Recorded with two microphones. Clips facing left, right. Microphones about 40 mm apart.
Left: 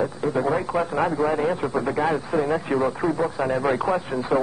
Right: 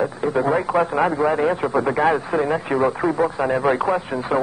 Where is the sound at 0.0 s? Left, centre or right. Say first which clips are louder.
Right 3 dB; centre.